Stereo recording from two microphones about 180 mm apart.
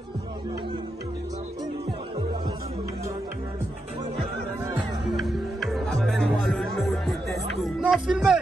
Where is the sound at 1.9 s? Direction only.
25° right (ahead or behind).